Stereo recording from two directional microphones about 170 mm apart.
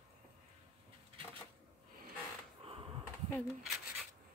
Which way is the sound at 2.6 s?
35° right (ahead or behind).